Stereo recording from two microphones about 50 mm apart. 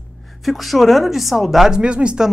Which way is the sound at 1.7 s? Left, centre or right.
Right.